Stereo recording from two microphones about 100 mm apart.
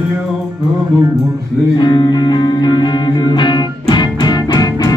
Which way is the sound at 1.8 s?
45° left (ahead or behind).